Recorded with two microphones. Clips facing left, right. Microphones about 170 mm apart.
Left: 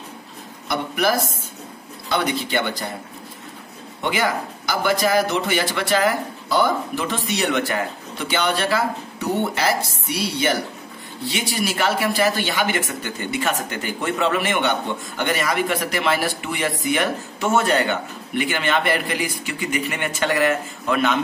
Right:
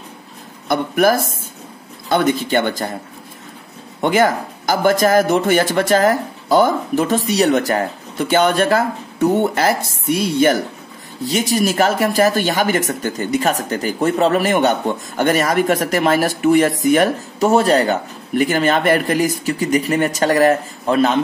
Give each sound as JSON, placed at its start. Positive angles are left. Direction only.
{"t": 0.7, "sound": "speech", "side_deg": -50}
{"t": 4.0, "sound": "speech", "side_deg": -45}